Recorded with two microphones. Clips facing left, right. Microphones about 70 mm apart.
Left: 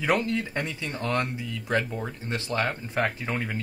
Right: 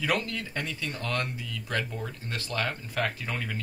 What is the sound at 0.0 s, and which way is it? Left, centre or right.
Speech, left.